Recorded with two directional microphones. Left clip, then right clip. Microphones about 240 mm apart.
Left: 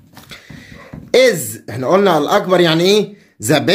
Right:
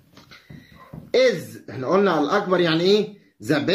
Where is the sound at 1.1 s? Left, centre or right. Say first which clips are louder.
Left 7 dB; left.